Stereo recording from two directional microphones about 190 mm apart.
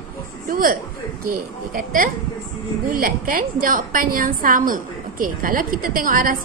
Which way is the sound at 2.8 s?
50° right (ahead or behind).